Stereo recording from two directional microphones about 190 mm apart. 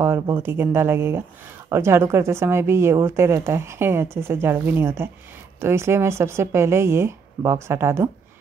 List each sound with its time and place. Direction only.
0.0 s a woman's voice: 15° right (ahead or behind)